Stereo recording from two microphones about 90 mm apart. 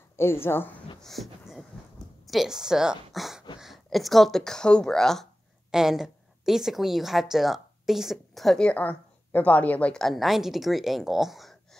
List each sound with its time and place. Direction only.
0.1 s a woman's voice: 30° left (ahead or behind)
1.0 s a woman's voice: centre (ahead or behind)
5.7 s a woman's voice: 5° right (ahead or behind); by 9.9 s 15° left (ahead or behind)
9.9 s a woman's voice: centre (ahead or behind)